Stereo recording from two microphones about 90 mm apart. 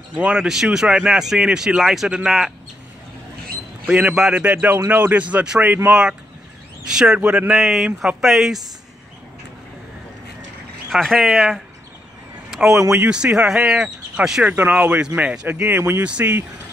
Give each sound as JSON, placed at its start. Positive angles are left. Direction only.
{"t": 0.1, "sound": "speech", "side_deg": -10}
{"t": 3.8, "sound": "speech", "side_deg": -10}
{"t": 10.9, "sound": "speech", "side_deg": 0}
{"t": 12.9, "sound": "speech", "side_deg": -10}
{"t": 16.0, "sound": "speech", "side_deg": -15}